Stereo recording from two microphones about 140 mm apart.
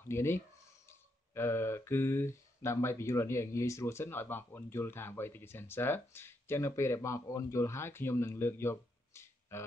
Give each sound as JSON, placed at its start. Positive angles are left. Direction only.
{"t": 0.1, "sound": "speech", "side_deg": 20}